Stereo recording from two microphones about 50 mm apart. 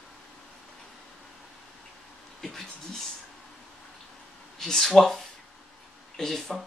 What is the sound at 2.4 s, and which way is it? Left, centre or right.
Speech, centre.